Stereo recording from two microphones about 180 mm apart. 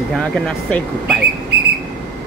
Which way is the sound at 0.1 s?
Centre (ahead or behind).